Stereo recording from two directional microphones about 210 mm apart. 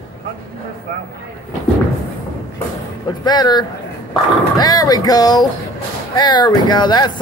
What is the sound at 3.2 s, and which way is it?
Speech, 20° left (ahead or behind).